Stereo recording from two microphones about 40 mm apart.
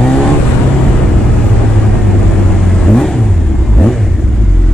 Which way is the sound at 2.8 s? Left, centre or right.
Centre.